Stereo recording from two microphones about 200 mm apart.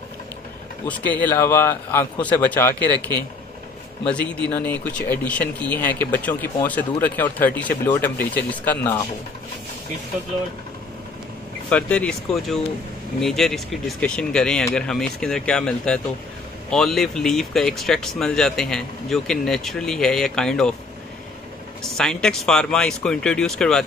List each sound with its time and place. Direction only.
0.8 s speech: 5° left (ahead or behind)
4.0 s speech: 5° left (ahead or behind)
11.7 s speech: 5° left (ahead or behind)
21.8 s speech: 5° left (ahead or behind)